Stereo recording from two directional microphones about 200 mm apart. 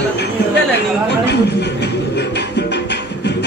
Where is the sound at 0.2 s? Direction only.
55° left (ahead or behind).